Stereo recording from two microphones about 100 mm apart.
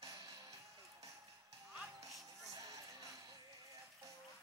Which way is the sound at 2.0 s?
35° right (ahead or behind).